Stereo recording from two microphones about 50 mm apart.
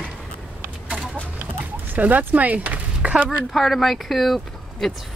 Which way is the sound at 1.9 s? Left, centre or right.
Right.